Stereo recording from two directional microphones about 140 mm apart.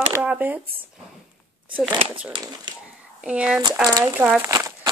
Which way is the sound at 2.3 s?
30° right (ahead or behind).